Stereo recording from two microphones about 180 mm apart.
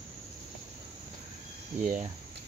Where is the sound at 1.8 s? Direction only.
45° right (ahead or behind).